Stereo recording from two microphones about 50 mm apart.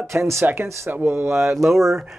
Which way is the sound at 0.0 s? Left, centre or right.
Right.